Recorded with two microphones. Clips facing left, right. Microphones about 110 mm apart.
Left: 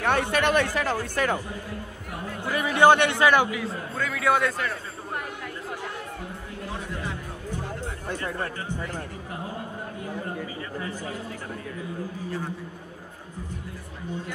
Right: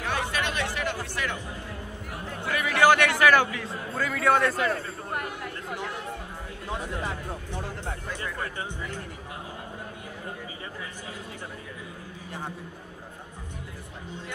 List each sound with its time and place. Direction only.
0.0 s chatter: 60° left (ahead or behind)
0.7 s speech: 40° left (ahead or behind)
2.4 s a man's voice: 30° left (ahead or behind)
3.5 s a man's voice: centre (ahead or behind)
8.1 s speech: 40° left (ahead or behind)